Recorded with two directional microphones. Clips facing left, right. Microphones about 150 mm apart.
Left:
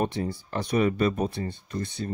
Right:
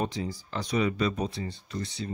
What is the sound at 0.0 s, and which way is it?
Speech, 55° left (ahead or behind).